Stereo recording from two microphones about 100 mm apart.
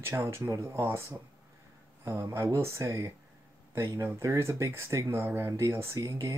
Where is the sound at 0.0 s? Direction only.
25° right (ahead or behind).